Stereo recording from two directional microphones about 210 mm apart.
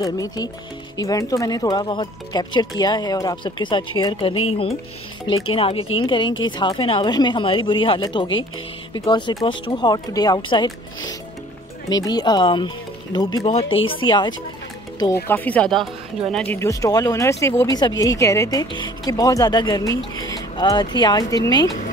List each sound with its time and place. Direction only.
0.0 s speech: 15° left (ahead or behind)
5.5 s speech: 25° left (ahead or behind)
13.4 s speech: 30° left (ahead or behind)
15.2 s speech: 10° left (ahead or behind)